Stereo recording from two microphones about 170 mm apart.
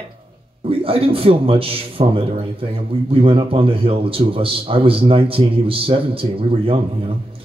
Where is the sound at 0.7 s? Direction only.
35° right (ahead or behind).